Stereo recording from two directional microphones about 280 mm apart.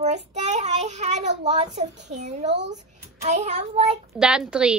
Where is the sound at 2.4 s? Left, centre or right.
Right.